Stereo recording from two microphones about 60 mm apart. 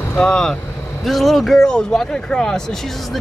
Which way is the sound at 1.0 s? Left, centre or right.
Centre.